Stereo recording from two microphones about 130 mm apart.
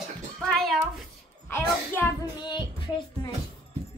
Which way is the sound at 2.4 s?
35° left (ahead or behind).